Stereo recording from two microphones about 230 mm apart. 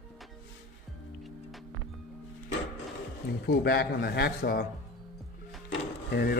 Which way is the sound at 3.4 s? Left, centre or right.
Left.